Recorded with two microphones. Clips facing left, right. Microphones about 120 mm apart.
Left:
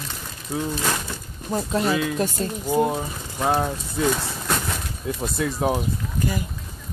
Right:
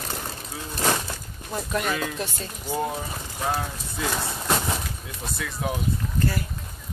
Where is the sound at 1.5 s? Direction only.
30° left (ahead or behind).